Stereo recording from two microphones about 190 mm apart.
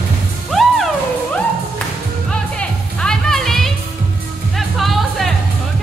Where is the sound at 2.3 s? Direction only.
5° left (ahead or behind).